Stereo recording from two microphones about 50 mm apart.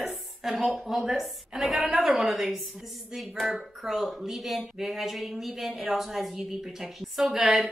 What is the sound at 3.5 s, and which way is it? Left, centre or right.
Speech, centre.